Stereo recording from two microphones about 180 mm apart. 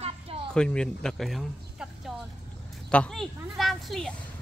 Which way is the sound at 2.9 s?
5° left (ahead or behind).